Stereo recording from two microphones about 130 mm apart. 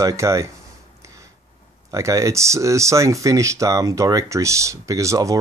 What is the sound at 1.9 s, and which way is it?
Speech, 25° right (ahead or behind).